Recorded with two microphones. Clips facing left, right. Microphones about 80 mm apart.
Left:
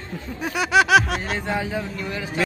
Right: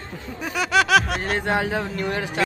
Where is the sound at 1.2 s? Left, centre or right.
Right.